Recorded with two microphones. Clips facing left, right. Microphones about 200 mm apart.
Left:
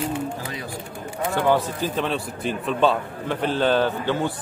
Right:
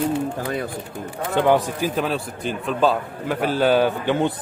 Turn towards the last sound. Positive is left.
turn(degrees=-15)  # may be behind; listen again after turning